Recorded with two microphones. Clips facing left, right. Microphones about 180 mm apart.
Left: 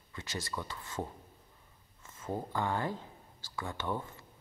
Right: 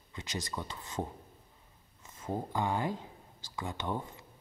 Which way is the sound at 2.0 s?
15° right (ahead or behind).